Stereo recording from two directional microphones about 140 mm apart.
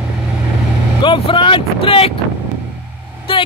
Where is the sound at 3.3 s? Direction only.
40° left (ahead or behind).